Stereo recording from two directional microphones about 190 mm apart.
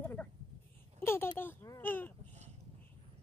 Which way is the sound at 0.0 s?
10° left (ahead or behind).